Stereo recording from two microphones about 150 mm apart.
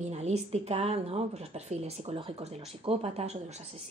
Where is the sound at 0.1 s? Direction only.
45° right (ahead or behind).